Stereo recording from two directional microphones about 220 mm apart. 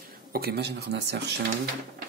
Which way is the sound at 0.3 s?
45° right (ahead or behind).